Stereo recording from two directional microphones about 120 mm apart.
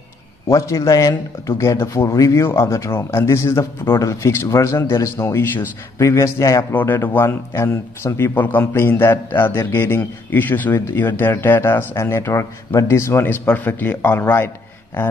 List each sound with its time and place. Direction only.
0.5 s a man's voice: 25° left (ahead or behind)